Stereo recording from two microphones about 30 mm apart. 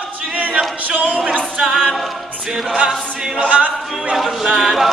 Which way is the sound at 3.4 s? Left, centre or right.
Right.